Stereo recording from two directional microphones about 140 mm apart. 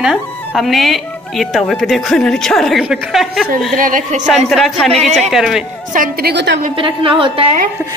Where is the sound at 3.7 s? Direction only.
75° right (ahead or behind).